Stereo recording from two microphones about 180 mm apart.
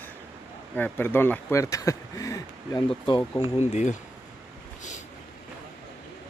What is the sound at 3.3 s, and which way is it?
Speech, 35° left (ahead or behind).